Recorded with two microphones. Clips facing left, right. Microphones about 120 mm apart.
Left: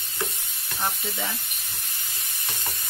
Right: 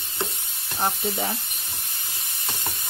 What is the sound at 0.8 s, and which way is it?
Speech, 35° right (ahead or behind).